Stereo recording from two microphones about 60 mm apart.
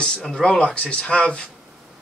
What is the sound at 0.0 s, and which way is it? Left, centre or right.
Speech, centre.